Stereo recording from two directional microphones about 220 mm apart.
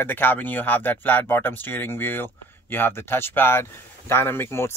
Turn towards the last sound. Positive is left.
turn(degrees=10)  # may be behind; listen again after turning